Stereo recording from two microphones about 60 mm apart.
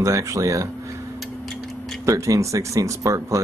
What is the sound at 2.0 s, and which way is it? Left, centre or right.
Speech, right.